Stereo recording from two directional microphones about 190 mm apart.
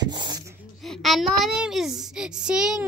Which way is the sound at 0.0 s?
20° right (ahead or behind).